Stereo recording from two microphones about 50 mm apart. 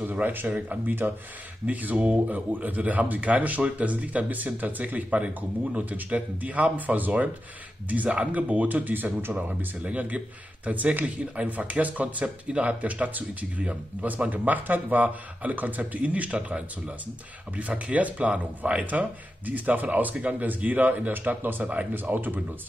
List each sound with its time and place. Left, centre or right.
0.0 s a sound: right
0.5 s speech: right
9.3 s speech: right